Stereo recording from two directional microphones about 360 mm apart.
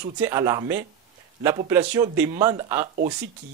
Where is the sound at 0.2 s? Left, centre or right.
Centre.